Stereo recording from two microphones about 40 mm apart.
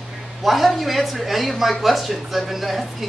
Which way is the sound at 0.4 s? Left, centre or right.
Centre.